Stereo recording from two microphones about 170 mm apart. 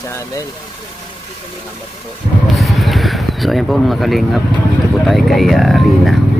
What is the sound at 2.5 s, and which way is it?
Speech, centre (ahead or behind).